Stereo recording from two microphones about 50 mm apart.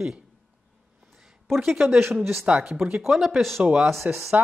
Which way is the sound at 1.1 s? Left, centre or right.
Centre.